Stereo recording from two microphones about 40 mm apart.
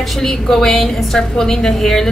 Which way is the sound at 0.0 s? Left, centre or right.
Centre.